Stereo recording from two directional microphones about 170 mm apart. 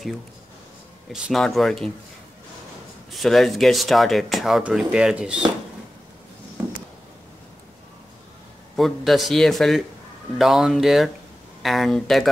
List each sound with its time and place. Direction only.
1.1 s speech: centre (ahead or behind)
3.1 s speech: centre (ahead or behind)
8.7 s speech: centre (ahead or behind)